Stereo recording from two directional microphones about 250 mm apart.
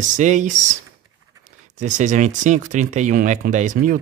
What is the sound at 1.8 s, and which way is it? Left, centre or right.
Speech, right.